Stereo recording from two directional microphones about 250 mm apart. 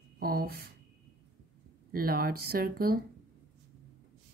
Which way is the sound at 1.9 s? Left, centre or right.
Right.